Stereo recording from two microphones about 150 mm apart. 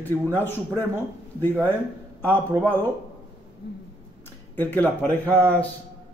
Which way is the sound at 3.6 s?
90° left.